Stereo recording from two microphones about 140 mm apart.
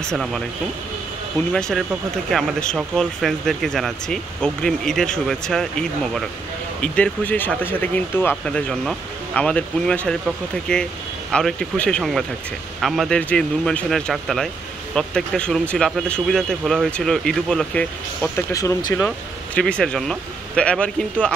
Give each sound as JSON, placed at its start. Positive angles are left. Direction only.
{"t": 0.0, "sound": "speech", "side_deg": 5}
{"t": 1.5, "sound": "speech", "side_deg": 5}
{"t": 18.3, "sound": "speech", "side_deg": 20}
{"t": 18.9, "sound": "speech", "side_deg": 5}